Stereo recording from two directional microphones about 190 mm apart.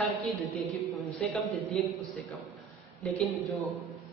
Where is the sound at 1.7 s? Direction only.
5° left (ahead or behind).